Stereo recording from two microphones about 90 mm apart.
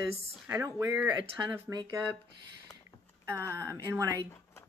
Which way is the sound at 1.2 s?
55° right (ahead or behind).